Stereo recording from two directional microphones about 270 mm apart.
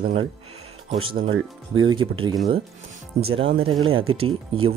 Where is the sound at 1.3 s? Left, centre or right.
Right.